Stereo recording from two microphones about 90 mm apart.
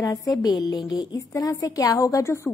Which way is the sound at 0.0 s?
40° left (ahead or behind).